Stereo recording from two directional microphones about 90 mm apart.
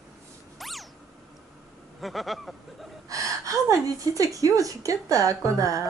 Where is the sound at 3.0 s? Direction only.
40° right (ahead or behind).